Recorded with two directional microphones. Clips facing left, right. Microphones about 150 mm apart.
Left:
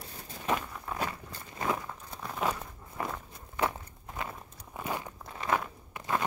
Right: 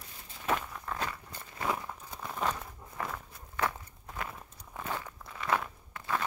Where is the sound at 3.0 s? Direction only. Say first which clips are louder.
Left 2 dB; 20° left (ahead or behind).